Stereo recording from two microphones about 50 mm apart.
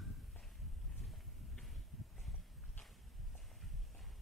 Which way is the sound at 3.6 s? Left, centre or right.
Centre.